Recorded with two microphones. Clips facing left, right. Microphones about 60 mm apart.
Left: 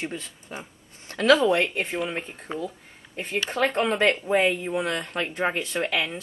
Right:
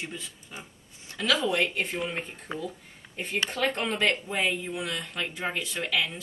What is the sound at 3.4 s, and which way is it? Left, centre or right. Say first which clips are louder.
Speech: left 5 dB; left.